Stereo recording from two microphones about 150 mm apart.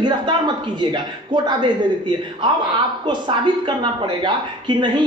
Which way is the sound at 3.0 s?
30° right (ahead or behind).